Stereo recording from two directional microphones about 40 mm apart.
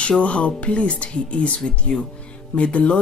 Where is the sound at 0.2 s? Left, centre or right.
Left.